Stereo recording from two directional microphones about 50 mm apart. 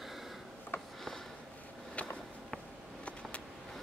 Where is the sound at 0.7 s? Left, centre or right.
Left.